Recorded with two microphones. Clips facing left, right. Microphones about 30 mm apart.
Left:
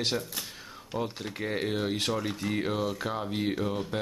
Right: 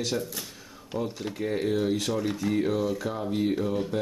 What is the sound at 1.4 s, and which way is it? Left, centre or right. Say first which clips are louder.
Speech: right 3 dB; left.